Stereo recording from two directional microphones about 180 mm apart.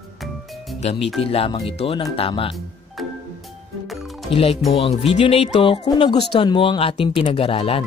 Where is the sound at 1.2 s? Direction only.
30° left (ahead or behind).